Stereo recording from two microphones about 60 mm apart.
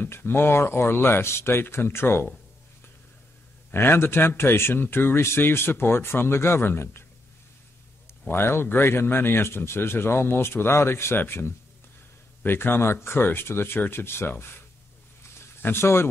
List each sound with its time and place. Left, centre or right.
0.0 s speech: left
3.7 s speech: left
8.3 s speech: left
15.6 s speech: left